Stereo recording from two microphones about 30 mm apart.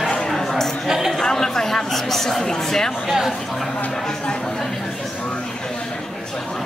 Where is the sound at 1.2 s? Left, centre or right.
Centre.